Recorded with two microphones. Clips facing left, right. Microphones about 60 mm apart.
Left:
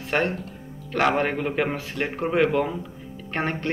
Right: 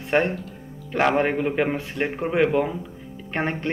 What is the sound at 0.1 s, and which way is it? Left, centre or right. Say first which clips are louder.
A man's voice: right 3 dB; centre.